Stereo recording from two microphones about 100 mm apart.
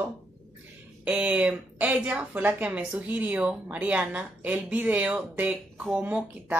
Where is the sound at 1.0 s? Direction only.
10° right (ahead or behind).